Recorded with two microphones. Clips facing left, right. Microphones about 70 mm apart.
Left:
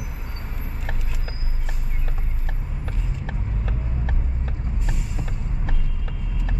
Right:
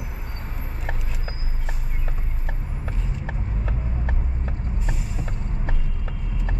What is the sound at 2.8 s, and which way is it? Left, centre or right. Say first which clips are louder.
Vehicle: right 1 dB; centre.